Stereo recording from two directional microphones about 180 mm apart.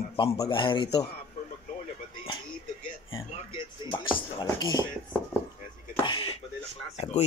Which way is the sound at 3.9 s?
30° left (ahead or behind).